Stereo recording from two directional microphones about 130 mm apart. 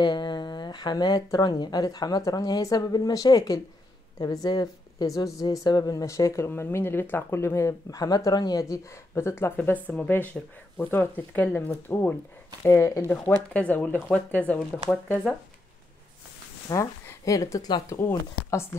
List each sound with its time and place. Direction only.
0.0 s speech: 35° left (ahead or behind); by 14.6 s 10° left (ahead or behind)
16.6 s speech: 25° left (ahead or behind)
17.8 s speech: 20° left (ahead or behind)